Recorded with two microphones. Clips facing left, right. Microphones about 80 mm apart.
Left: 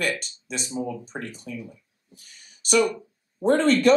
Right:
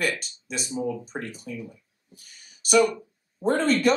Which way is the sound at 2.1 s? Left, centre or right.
Centre.